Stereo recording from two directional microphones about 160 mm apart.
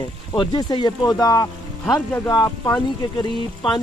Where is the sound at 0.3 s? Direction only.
30° left (ahead or behind).